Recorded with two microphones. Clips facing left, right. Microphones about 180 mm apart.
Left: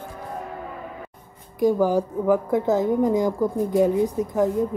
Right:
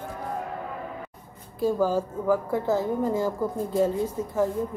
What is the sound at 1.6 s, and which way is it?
A woman's voice, 15° left (ahead or behind).